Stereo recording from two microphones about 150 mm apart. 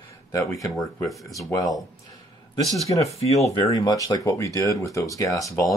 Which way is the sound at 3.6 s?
25° left (ahead or behind).